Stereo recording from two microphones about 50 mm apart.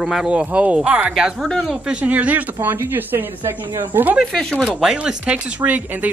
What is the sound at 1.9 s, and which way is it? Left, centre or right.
Speech, right.